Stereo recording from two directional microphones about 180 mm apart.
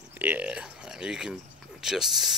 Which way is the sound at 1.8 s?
5° right (ahead or behind).